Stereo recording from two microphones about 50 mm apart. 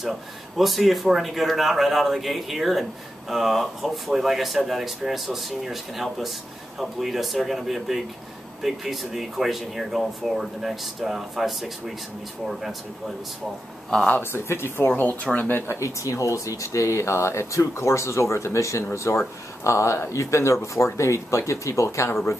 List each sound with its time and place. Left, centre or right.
0.6 s speech: centre
14.3 s speech: left
14.9 s speech: left
15.8 s speech: left
18.9 s speech: left
20.1 s speech: left